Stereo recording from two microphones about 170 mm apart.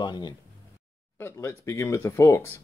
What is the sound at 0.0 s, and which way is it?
Speech, 25° left (ahead or behind).